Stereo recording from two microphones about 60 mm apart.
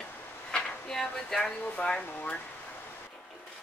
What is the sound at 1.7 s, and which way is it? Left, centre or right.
Speech, centre.